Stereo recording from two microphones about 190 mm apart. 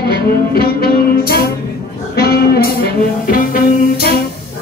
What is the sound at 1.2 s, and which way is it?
Music, 55° left (ahead or behind).